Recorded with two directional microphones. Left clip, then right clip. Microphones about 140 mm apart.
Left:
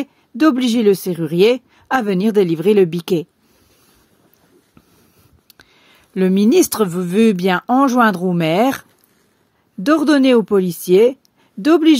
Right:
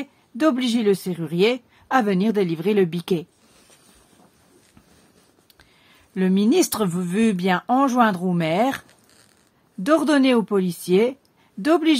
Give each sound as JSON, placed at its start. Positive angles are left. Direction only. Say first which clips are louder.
{"t": 0.0, "sound": "speech", "louder": "left 6 dB", "side_deg": 35}
{"t": 5.5, "sound": "speech", "louder": "left 7 dB", "side_deg": 50}
{"t": 9.8, "sound": "speech", "louder": "left 5 dB", "side_deg": 35}